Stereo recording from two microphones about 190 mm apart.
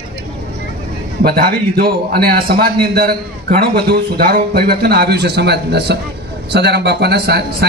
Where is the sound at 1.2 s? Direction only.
55° right (ahead or behind).